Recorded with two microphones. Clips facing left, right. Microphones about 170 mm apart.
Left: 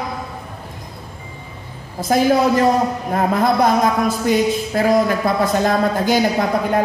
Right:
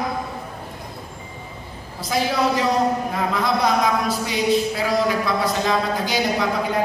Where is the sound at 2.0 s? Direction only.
50° left (ahead or behind).